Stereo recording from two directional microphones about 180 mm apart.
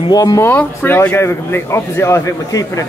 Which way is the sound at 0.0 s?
20° left (ahead or behind).